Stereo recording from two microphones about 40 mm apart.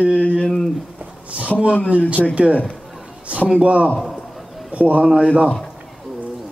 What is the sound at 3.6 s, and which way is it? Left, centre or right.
Speech, right.